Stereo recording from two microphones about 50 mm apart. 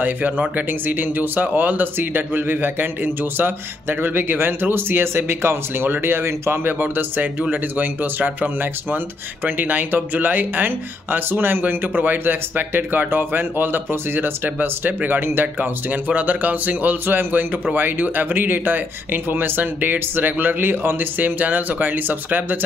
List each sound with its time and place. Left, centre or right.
0.0 s speech: right
6.8 s speech: right
16.1 s speech: right